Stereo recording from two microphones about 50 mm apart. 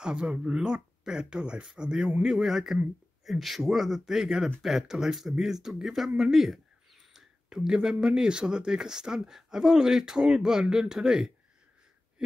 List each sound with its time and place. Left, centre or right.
0.0 s speech: centre
2.2 s speech: centre